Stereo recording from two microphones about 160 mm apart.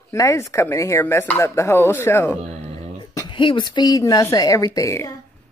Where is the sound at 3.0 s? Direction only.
30° left (ahead or behind).